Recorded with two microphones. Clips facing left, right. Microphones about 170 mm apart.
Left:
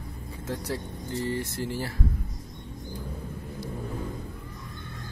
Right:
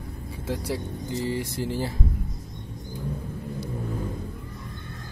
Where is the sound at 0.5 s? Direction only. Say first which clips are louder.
Right 3 dB; 15° right (ahead or behind).